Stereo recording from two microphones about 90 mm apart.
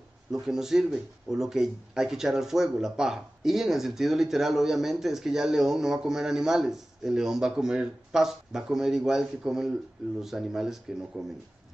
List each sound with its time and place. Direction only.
0.3 s speech: 5° right (ahead or behind)